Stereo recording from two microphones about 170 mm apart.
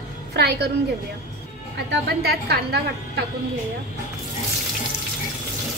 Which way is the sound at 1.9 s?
70° right (ahead or behind).